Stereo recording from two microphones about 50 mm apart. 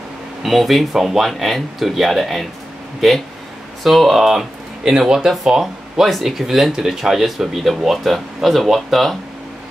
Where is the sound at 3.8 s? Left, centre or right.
Centre.